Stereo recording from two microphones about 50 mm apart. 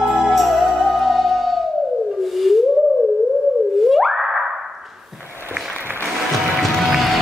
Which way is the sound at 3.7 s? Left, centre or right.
Centre.